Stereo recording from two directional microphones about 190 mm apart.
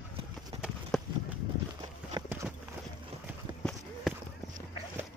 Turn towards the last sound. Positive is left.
turn(degrees=5)  # may be behind; listen again after turning